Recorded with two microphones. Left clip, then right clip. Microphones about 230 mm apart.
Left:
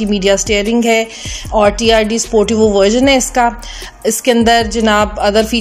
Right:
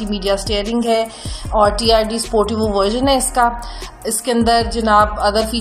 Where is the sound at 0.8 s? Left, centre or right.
Left.